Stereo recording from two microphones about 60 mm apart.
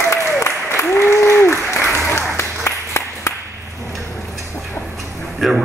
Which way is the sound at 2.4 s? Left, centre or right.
Left.